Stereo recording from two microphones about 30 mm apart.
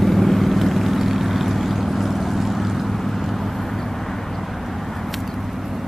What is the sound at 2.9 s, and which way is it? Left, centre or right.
Vehicle, centre.